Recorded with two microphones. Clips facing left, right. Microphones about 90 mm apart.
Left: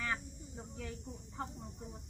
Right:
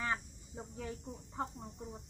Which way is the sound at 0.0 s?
25° right (ahead or behind).